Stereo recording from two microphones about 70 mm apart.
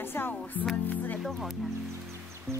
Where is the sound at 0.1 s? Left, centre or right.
Left.